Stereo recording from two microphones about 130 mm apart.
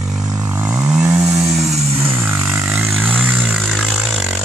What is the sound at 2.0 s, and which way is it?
Vehicle, 15° right (ahead or behind).